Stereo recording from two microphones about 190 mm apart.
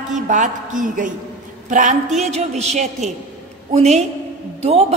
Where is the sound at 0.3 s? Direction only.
45° right (ahead or behind).